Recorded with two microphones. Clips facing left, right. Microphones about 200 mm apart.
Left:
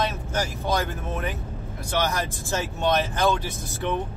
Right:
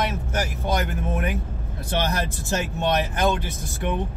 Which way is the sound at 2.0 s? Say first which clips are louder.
Even; 20° right (ahead or behind).